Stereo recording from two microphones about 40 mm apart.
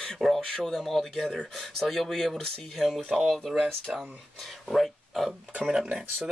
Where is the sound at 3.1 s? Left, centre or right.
Right.